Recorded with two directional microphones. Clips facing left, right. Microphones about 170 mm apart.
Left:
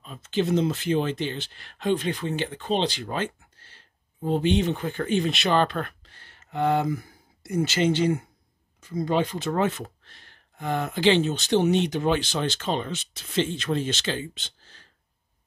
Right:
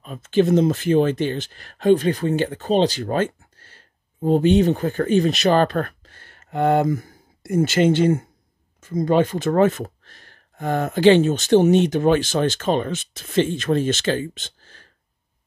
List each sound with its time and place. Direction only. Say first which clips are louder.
0.0 s speech: right 8 dB; 50° right (ahead or behind)